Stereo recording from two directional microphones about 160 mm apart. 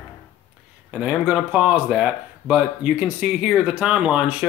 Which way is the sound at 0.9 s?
5° right (ahead or behind).